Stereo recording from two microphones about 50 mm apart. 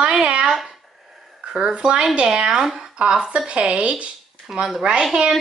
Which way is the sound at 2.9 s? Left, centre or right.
Centre.